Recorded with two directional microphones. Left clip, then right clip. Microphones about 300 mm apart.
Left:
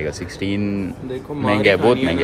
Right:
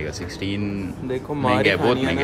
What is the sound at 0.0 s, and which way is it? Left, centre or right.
Speech, centre.